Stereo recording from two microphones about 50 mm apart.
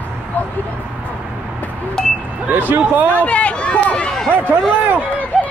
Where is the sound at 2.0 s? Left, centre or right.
Centre.